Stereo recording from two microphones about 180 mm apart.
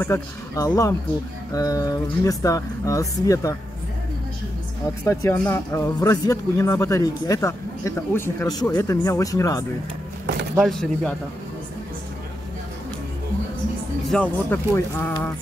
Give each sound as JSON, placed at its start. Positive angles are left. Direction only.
{"t": 0.0, "sound": "speech", "side_deg": 10}
{"t": 4.8, "sound": "speech", "side_deg": 15}
{"t": 10.6, "sound": "speech", "side_deg": 0}
{"t": 14.0, "sound": "speech", "side_deg": 5}